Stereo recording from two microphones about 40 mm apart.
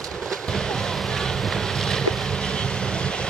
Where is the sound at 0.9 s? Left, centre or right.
Centre.